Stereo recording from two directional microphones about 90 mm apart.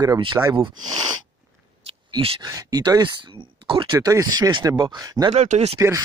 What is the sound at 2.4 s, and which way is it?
Speech, 45° right (ahead or behind).